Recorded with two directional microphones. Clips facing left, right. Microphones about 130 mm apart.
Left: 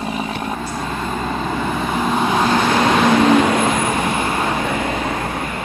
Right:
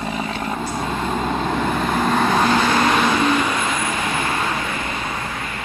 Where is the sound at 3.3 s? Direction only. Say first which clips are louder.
Left 6 dB; 50° left (ahead or behind).